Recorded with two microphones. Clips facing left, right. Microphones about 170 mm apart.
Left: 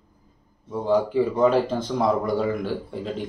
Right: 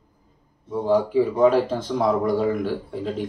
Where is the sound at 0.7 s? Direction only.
Centre (ahead or behind).